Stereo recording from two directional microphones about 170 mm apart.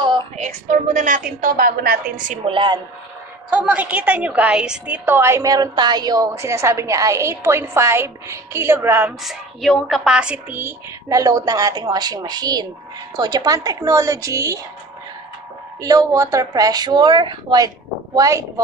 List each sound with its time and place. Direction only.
0.4 s a woman's voice: 45° right (ahead or behind)
2.4 s a woman's voice: 30° right (ahead or behind)
3.4 s a woman's voice: 10° right (ahead or behind)
9.2 s a woman's voice: centre (ahead or behind); by 14.6 s 20° right (ahead or behind)
15.8 s a woman's voice: 20° right (ahead or behind)